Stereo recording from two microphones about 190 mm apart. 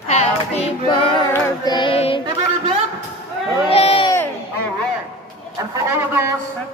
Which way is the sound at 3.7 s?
30° left (ahead or behind).